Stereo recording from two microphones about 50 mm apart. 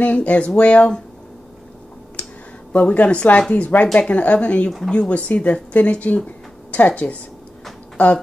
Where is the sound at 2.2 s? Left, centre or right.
Left.